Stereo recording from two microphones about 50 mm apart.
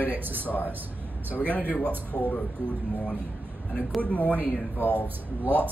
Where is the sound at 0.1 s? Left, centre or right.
Right.